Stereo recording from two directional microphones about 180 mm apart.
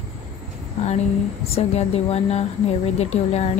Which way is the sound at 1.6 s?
35° left (ahead or behind).